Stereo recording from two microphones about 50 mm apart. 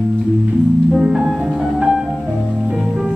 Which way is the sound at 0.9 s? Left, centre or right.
Centre.